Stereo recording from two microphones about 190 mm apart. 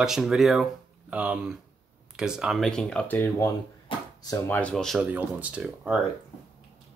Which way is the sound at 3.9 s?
25° left (ahead or behind).